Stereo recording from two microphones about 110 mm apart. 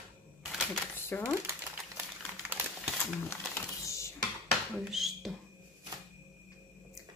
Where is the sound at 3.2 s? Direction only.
25° left (ahead or behind).